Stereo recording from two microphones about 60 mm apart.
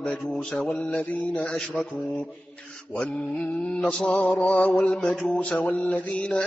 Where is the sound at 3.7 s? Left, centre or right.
Centre.